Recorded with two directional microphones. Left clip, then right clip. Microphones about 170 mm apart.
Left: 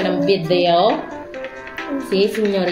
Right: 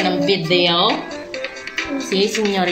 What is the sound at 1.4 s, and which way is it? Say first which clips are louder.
Music: right 4 dB; 35° left (ahead or behind).